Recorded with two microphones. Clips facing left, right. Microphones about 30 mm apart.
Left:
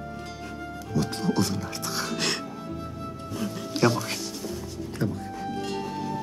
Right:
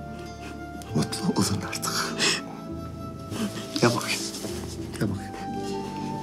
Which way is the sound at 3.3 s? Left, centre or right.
Right.